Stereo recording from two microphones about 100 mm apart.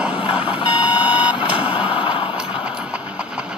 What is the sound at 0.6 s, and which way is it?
Vehicle, 60° left (ahead or behind).